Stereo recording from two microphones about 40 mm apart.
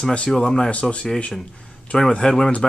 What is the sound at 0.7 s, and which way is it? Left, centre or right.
Speech, left.